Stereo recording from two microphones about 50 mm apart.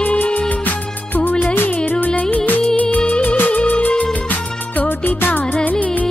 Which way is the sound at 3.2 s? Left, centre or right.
Left.